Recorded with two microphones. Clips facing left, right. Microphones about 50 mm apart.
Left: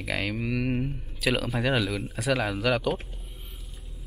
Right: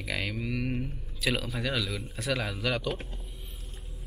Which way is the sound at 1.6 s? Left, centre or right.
Centre.